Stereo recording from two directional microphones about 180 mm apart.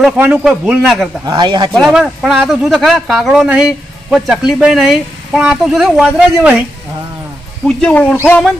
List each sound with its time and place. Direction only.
0.0 s speech: 5° right (ahead or behind)
1.2 s speech: 25° right (ahead or behind)
1.9 s speech: 5° right (ahead or behind)
7.6 s speech: 5° left (ahead or behind)